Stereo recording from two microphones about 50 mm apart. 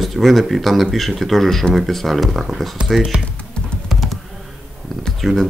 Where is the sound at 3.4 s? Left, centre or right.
Centre.